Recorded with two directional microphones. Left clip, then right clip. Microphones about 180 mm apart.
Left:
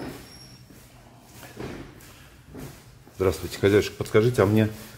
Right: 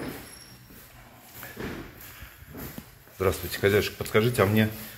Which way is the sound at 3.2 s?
50° left (ahead or behind).